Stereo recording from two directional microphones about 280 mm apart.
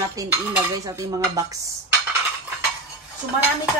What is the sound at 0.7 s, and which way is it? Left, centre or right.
Dishes, centre.